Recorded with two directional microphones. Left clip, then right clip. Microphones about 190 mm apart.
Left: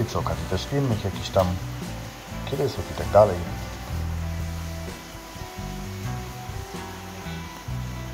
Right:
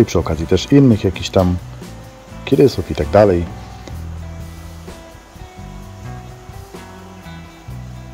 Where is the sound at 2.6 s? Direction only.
60° right (ahead or behind).